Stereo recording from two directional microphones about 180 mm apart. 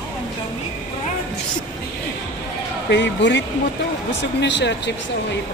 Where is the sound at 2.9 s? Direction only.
80° left.